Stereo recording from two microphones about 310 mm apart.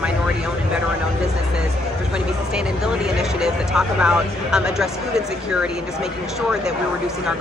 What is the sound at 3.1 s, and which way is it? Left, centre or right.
Speech, centre.